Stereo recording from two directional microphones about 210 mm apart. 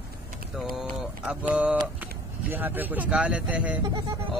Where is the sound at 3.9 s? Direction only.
20° right (ahead or behind).